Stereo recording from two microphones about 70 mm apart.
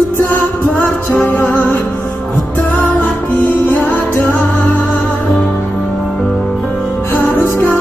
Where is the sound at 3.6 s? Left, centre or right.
Left.